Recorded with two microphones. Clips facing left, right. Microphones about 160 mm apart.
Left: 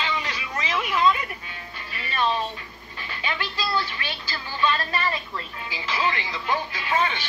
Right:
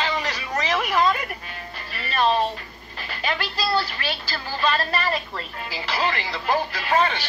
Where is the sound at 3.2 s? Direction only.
40° right (ahead or behind).